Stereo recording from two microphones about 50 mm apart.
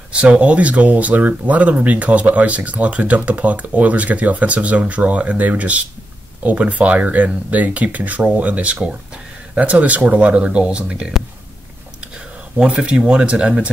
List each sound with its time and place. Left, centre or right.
0.1 s speech: right
12.8 s speech: right